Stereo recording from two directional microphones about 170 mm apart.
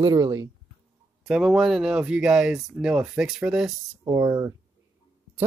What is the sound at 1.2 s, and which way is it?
Speech, centre (ahead or behind).